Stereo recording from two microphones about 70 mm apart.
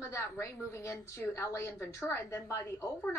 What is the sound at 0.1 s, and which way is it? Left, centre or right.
A woman's voice, left.